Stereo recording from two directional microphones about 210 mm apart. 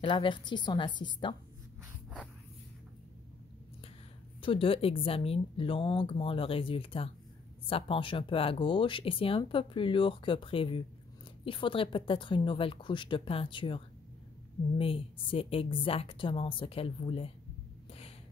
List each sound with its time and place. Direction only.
0.0 s speech: 25° left (ahead or behind)
4.4 s speech: 25° left (ahead or behind)